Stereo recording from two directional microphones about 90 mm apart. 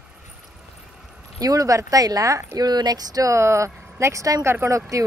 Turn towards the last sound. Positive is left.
turn(degrees=-35)  # may be behind; listen again after turning